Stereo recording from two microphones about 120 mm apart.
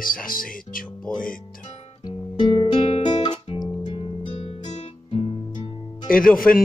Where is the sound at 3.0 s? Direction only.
40° left (ahead or behind); by 4.9 s 70° left (ahead or behind).